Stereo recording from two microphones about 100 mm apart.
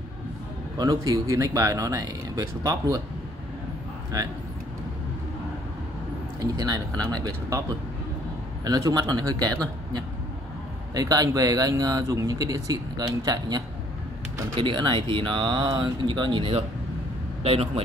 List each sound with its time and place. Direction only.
0.7 s speech: 35° right (ahead or behind)
6.4 s speech: 40° right (ahead or behind)
8.6 s speech: 40° right (ahead or behind)
14.6 s speech: 55° right (ahead or behind)
17.4 s speech: 80° right